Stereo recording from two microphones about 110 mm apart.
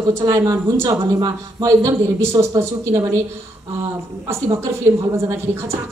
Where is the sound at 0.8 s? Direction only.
35° right (ahead or behind).